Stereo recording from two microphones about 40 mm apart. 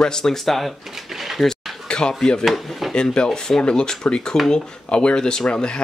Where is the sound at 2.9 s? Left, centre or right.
Left.